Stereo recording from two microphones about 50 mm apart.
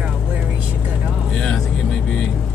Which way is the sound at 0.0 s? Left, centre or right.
Right.